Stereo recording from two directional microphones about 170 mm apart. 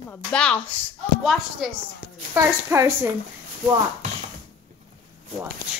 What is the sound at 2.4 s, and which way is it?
Speech, 15° right (ahead or behind).